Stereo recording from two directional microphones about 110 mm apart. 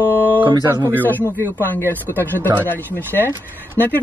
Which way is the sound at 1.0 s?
15° left (ahead or behind).